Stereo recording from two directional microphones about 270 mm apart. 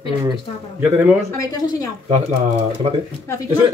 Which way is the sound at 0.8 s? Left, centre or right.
Centre.